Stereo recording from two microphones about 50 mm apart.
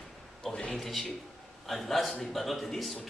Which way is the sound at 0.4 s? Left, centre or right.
Centre.